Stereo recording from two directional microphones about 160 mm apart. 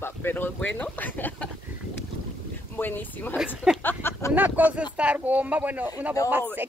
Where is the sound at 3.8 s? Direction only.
15° left (ahead or behind).